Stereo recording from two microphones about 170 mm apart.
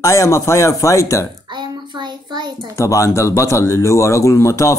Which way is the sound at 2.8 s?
15° left (ahead or behind).